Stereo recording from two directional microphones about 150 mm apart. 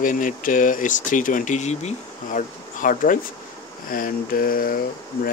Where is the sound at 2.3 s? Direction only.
60° left (ahead or behind).